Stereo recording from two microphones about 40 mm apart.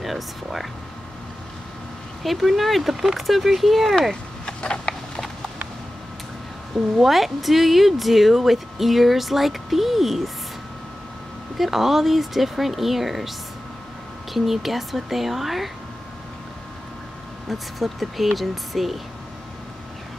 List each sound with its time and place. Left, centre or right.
0.0 s speech: centre
2.2 s speech: centre
4.6 s a sound: left
7.0 s speech: centre
11.5 s speech: centre
14.3 s speech: centre
17.5 s speech: centre